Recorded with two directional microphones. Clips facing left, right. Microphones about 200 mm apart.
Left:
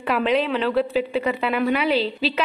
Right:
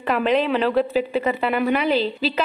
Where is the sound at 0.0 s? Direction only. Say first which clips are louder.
Right 1 dB; centre (ahead or behind).